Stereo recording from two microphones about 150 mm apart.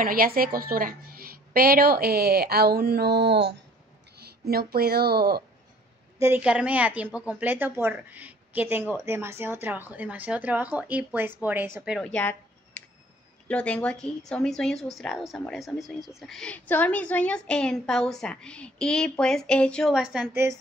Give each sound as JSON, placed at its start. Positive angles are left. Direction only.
{"t": 0.0, "sound": "a woman's voice", "side_deg": -75}
{"t": 6.1, "sound": "a woman's voice", "side_deg": -15}
{"t": 11.9, "sound": "a sound", "side_deg": 5}
{"t": 13.5, "sound": "speech", "side_deg": 10}